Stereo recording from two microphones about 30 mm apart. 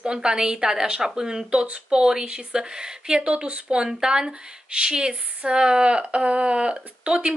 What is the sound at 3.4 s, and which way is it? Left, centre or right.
Speech, right.